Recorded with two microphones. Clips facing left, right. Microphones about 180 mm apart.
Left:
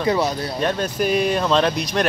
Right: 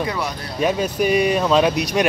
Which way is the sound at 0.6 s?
5° right (ahead or behind).